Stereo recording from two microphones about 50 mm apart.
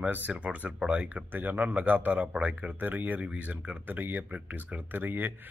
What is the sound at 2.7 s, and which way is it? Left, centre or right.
Speech, right.